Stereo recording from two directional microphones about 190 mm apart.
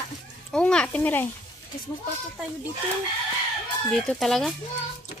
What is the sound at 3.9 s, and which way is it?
Speech, centre (ahead or behind).